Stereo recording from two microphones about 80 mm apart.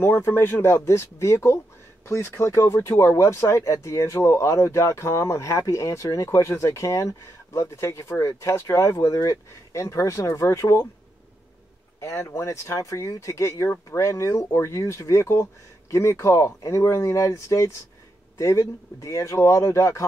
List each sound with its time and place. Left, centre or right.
0.0 s speech: left
12.0 s speech: left